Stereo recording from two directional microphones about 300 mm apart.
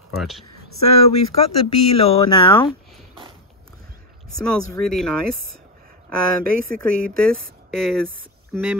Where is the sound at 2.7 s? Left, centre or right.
Centre.